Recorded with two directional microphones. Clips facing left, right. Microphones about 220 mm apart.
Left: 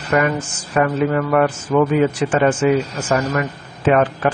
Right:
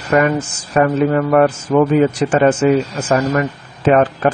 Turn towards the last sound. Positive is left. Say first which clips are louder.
# right 3 dB
turn(degrees=-35)  # may be behind; listen again after turning